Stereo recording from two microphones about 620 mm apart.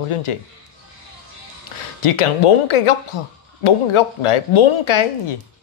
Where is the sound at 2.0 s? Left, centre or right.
Left.